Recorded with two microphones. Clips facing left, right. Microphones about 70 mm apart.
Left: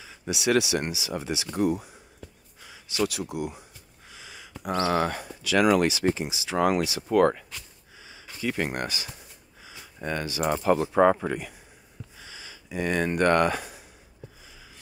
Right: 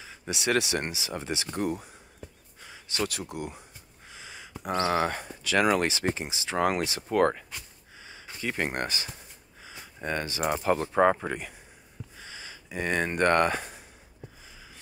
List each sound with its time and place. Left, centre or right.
0.3 s speech: right
2.6 s a sound: right
3.3 s speech: right
10.4 s speech: left
10.7 s speech: right
12.2 s a sound: right